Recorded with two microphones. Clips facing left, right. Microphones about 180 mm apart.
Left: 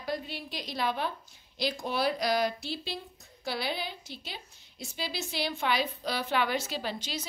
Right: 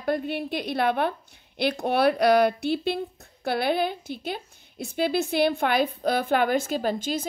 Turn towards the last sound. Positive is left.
turn(degrees=-50)  # may be behind; listen again after turning